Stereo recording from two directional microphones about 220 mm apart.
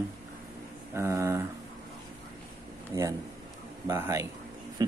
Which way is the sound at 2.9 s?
15° right (ahead or behind).